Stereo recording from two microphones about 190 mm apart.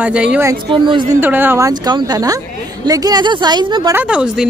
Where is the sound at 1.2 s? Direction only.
10° right (ahead or behind).